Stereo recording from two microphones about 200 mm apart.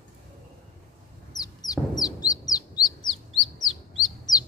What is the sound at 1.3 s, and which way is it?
Bird, 20° left (ahead or behind).